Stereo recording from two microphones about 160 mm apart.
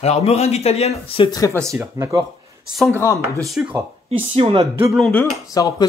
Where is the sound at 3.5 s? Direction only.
5° right (ahead or behind).